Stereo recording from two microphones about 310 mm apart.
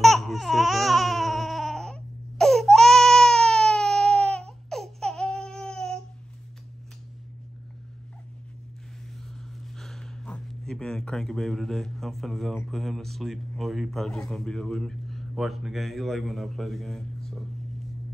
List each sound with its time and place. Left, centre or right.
0.0 s baby cry: centre
9.8 s speech: centre